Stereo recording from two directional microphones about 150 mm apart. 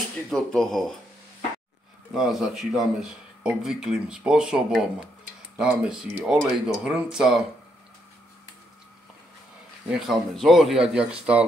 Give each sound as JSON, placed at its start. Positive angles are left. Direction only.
{"t": 0.3, "sound": "speech", "side_deg": 5}
{"t": 2.1, "sound": "speech", "side_deg": 0}
{"t": 9.8, "sound": "speech", "side_deg": 0}